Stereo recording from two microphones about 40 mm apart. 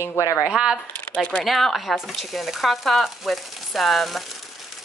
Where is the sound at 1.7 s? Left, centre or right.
Centre.